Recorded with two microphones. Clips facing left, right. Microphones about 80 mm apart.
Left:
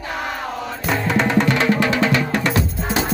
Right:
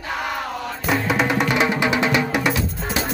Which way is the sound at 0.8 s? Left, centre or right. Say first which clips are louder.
Left 1 dB; centre.